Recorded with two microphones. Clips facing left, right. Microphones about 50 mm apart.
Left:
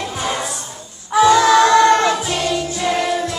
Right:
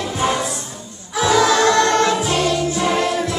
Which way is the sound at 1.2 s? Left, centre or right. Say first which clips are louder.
Left 4 dB; centre.